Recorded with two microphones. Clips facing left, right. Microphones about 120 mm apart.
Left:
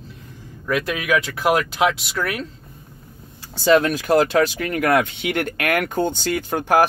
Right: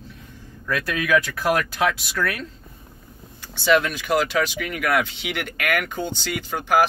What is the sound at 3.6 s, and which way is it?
Speech, 40° left (ahead or behind).